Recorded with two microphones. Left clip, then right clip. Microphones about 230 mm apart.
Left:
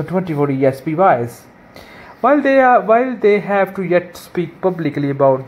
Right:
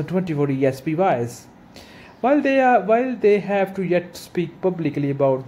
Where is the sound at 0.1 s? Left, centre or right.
Centre.